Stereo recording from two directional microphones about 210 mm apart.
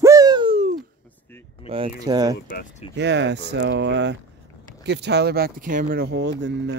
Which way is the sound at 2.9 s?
55° right (ahead or behind).